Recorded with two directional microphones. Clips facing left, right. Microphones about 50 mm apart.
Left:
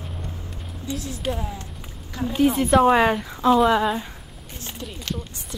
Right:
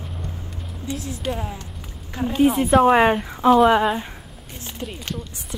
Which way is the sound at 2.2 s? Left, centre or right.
Right.